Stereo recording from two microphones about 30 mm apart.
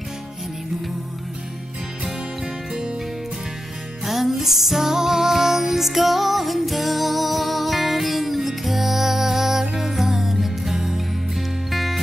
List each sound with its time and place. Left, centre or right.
2.0 s music: centre
4.0 s music: centre